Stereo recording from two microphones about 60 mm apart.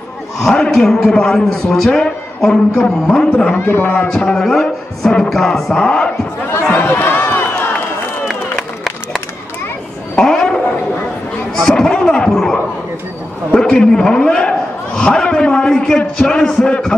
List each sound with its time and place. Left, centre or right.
0.4 s a man's voice: centre
3.5 s speech: left
4.1 s a man's voice: centre
6.7 s run: left
10.1 s a sound: centre
11.5 s speech: centre
13.6 s a man's voice: centre